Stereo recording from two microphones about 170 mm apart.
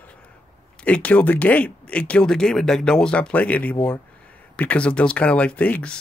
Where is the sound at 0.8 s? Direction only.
10° left (ahead or behind).